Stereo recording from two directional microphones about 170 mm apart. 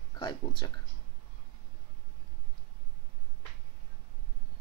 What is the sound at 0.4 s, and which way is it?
Speech, 30° left (ahead or behind).